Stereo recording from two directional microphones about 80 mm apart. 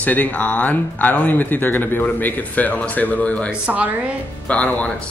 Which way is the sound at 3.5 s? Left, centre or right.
Centre.